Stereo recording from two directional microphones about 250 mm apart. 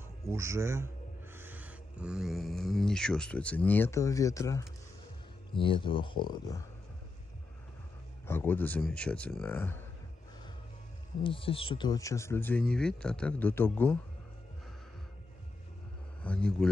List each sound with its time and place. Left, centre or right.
0.3 s a man's voice: centre
8.3 s speech: centre
11.2 s speech: left
16.2 s speech: centre